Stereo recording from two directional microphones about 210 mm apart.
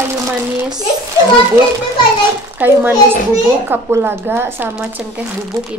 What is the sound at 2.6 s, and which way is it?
Speech, 10° right (ahead or behind).